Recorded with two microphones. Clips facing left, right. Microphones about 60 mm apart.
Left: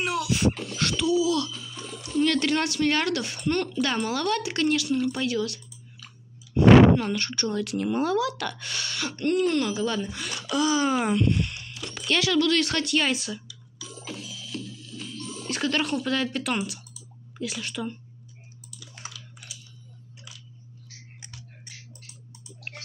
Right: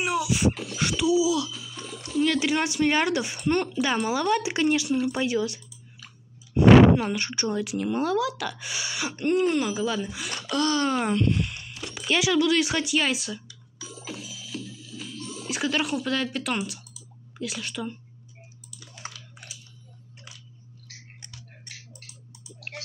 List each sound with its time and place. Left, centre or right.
0.0 s music: centre
2.0 s speech: centre
7.7 s speech: centre
9.8 s speech: centre
10.5 s speech: centre
13.8 s music: centre
17.4 s speech: centre
19.0 s typing: right